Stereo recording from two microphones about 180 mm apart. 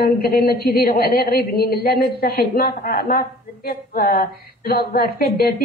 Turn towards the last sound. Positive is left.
turn(degrees=55)  # may be behind; listen again after turning